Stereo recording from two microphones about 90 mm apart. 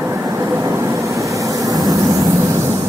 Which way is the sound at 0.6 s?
35° right (ahead or behind).